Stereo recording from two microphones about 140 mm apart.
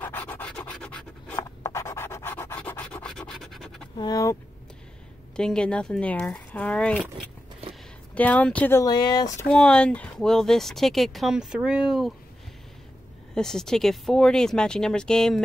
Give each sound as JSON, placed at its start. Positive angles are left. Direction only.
{"t": 0.0, "sound": "a sound", "side_deg": 15}
{"t": 1.6, "sound": "scratch", "side_deg": 20}
{"t": 3.9, "sound": "speech", "side_deg": 30}
{"t": 5.3, "sound": "speech", "side_deg": 5}
{"t": 8.1, "sound": "speech", "side_deg": 10}
{"t": 8.8, "sound": "speech", "side_deg": 30}
{"t": 9.5, "sound": "speech", "side_deg": 5}
{"t": 13.3, "sound": "speech", "side_deg": 5}